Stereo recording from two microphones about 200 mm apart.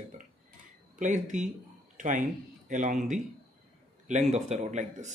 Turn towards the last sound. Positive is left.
turn(degrees=-35)  # may be behind; listen again after turning